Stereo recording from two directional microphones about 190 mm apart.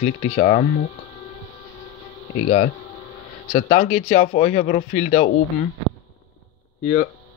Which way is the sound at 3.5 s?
40° left (ahead or behind).